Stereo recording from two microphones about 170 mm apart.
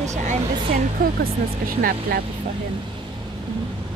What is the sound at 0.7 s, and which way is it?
Speech, 60° right (ahead or behind).